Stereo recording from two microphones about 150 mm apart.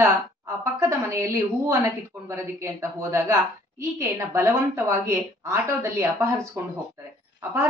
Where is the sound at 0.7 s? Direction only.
20° right (ahead or behind).